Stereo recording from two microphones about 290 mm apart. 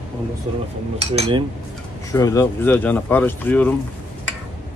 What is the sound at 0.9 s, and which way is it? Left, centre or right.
Cutlery, right.